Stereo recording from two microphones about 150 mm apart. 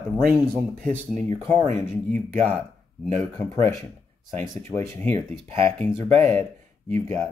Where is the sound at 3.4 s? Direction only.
15° left (ahead or behind).